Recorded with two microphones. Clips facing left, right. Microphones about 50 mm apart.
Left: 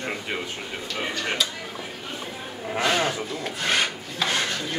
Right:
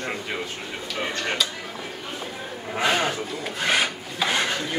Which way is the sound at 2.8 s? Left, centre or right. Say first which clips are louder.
Right 1 dB; centre.